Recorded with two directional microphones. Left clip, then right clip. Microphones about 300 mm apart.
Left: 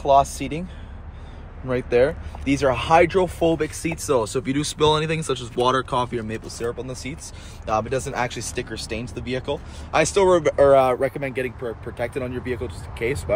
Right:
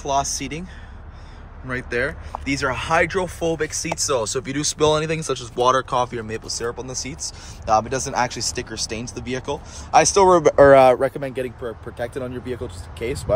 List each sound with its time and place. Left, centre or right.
0.0 s speech: centre
1.7 s speech: centre
10.7 s speech: right
11.0 s speech: centre